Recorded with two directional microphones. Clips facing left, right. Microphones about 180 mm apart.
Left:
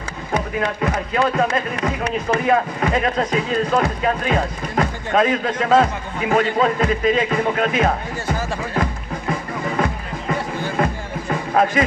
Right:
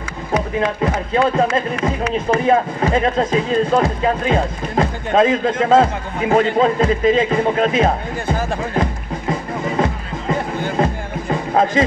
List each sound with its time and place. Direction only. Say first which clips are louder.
0.3 s speech: right 3 dB; 30° right (ahead or behind)
10.8 s music: right 2 dB; 25° right (ahead or behind)